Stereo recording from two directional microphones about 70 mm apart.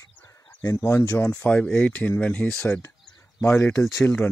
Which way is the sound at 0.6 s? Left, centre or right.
Left.